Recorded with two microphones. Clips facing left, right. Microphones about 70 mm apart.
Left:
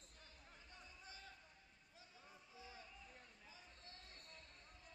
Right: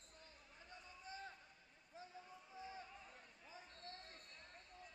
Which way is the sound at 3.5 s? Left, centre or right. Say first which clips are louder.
Right 10 dB; right.